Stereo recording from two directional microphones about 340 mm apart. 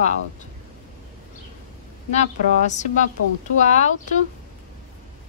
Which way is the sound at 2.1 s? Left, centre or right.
Left.